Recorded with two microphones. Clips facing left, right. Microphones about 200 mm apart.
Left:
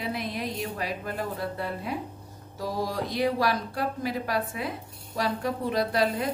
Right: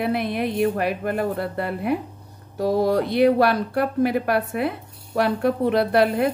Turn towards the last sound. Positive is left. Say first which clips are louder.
# right 7 dB
turn(degrees=-60)  # may be behind; listen again after turning